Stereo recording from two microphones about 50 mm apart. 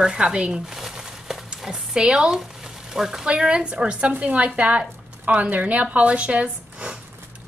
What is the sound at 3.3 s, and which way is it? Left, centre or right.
A woman's voice, centre.